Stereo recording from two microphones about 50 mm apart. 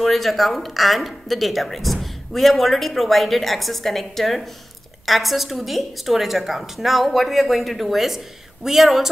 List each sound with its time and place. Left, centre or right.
0.0 s a woman's voice: centre